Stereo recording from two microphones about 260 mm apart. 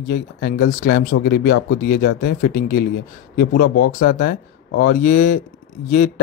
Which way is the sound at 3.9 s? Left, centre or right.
Left.